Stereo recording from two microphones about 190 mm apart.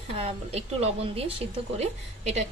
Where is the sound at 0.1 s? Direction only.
30° right (ahead or behind).